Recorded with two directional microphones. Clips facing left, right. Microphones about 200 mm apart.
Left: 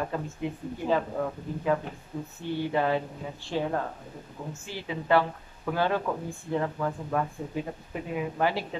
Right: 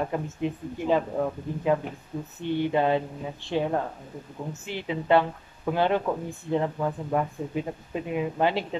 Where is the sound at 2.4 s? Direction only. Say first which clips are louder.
Right 3 dB; 20° right (ahead or behind).